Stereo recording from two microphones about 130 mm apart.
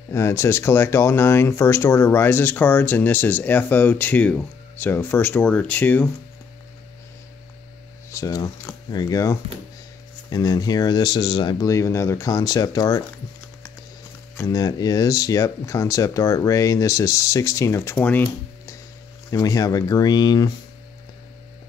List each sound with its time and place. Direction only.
0.1 s speech: 20° left (ahead or behind)
8.1 s speech: 25° left (ahead or behind)
14.4 s speech: 30° left (ahead or behind); by 18.2 s 15° left (ahead or behind)
19.4 s speech: 25° left (ahead or behind)